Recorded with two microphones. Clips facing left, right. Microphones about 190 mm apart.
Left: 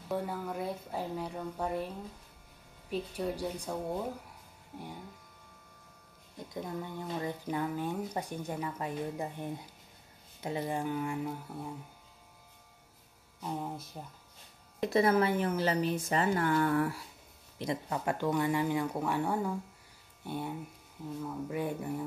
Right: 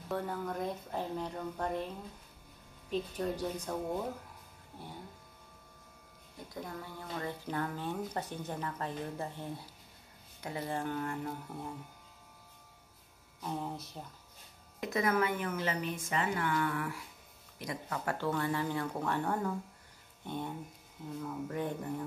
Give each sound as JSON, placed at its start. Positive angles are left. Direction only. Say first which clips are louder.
{"t": 0.1, "sound": "speech", "louder": "left 1 dB", "side_deg": 10}
{"t": 2.9, "sound": "speech", "louder": "even", "side_deg": 10}
{"t": 6.5, "sound": "speech", "louder": "left 5 dB", "side_deg": 20}
{"t": 13.4, "sound": "hum", "louder": "left 1 dB", "side_deg": 10}
{"t": 14.0, "sound": "speech", "louder": "left 1 dB", "side_deg": 10}
{"t": 14.8, "sound": "a woman's voice", "louder": "left 4 dB", "side_deg": 30}
{"t": 17.6, "sound": "speech", "louder": "left 5 dB", "side_deg": 25}